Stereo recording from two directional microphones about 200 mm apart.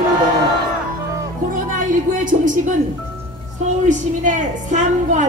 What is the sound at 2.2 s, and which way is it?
Speech, 40° right (ahead or behind).